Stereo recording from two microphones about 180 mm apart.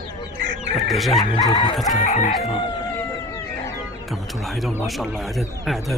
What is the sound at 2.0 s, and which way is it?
Chicken, 40° left (ahead or behind).